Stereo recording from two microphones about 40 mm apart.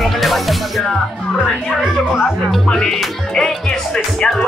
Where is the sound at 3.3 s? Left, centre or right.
Centre.